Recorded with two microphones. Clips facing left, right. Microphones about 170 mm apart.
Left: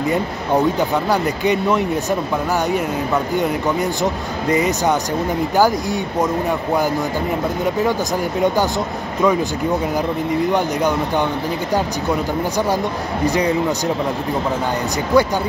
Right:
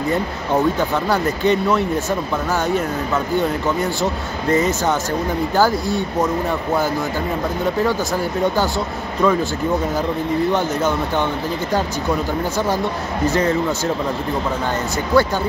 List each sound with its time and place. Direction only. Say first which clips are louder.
0.7 s speech: left 1 dB; 15° left (ahead or behind)
4.0 s speech: left 1 dB; 15° left (ahead or behind)
7.8 s speech: left 1 dB; 15° left (ahead or behind)
10.5 s speech: left 1 dB; 15° left (ahead or behind)
12.5 s speech: left 1 dB; 15° left (ahead or behind)
15.1 s speech: left 1 dB; 15° left (ahead or behind)